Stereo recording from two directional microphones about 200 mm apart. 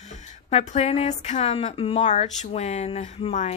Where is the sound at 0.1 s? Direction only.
35° left (ahead or behind).